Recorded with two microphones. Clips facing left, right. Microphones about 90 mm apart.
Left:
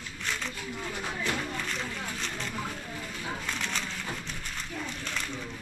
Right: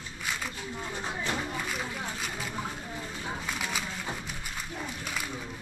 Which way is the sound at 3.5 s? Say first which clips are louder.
Even; 10° right (ahead or behind).